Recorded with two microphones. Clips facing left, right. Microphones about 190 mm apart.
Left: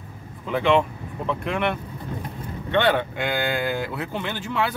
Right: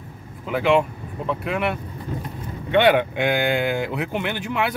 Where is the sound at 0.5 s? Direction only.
5° right (ahead or behind).